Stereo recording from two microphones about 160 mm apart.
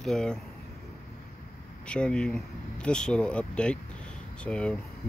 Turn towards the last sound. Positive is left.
turn(degrees=5)  # may be behind; listen again after turning